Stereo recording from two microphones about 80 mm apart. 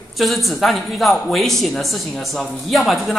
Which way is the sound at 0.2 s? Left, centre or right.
Centre.